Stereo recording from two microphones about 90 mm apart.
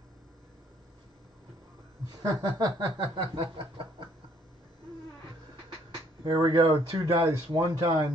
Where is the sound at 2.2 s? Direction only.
45° right (ahead or behind).